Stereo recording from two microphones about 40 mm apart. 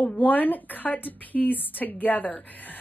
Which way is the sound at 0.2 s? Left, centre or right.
Left.